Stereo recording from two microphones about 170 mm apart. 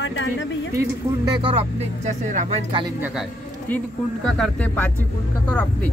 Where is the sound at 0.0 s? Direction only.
90° left.